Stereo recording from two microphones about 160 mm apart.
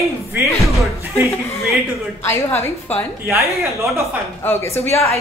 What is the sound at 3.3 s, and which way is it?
Speech, 20° right (ahead or behind).